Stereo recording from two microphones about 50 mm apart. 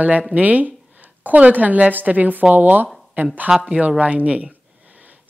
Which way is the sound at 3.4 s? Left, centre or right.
Centre.